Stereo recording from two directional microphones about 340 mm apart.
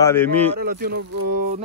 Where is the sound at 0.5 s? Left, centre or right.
Right.